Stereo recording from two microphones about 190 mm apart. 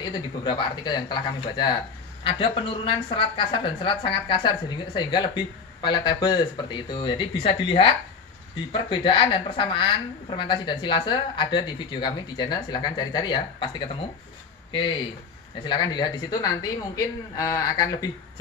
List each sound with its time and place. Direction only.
0.0 s a woman's voice: 25° left (ahead or behind)